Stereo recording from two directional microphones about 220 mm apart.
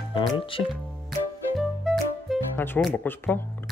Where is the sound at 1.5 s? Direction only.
Centre (ahead or behind).